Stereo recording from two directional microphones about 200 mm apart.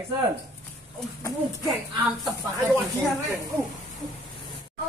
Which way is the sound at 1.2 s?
15° left (ahead or behind).